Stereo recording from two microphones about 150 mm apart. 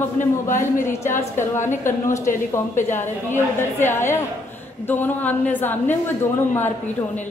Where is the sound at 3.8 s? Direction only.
15° left (ahead or behind).